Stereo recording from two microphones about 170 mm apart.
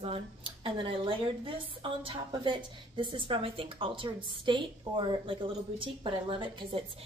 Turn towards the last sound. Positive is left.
turn(degrees=-30)  # may be behind; listen again after turning